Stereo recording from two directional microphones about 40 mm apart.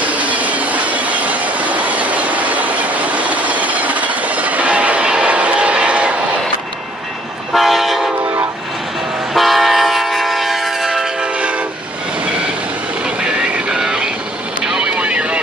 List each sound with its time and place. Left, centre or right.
0.0 s train: right
5.1 s vehicle: right
7.5 s train: centre
9.3 s train: centre
13.2 s vehicle: right